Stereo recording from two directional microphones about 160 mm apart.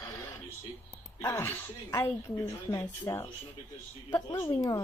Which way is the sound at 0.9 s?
20° left (ahead or behind).